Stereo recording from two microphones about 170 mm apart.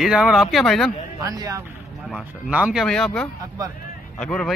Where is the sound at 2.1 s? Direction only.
5° right (ahead or behind).